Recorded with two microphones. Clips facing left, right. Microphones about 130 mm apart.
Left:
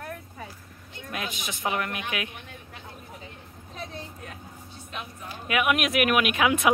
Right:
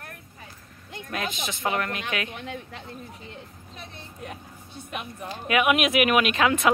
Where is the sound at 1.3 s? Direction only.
15° left (ahead or behind).